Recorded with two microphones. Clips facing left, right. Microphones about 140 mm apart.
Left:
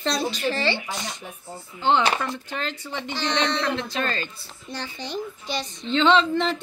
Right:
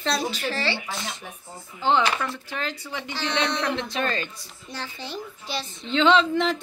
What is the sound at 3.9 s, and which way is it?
A woman's voice, 5° right (ahead or behind).